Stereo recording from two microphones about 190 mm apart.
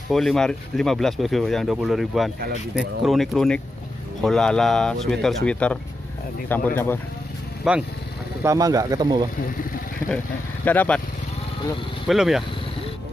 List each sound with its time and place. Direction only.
0.1 s speech: centre (ahead or behind)
7.7 s speech: 5° right (ahead or behind)
8.5 s speech: 20° right (ahead or behind)
10.0 s speech: 10° left (ahead or behind)
12.1 s speech: centre (ahead or behind)